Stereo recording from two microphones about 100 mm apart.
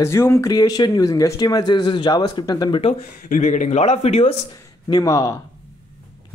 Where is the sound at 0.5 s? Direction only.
40° left (ahead or behind).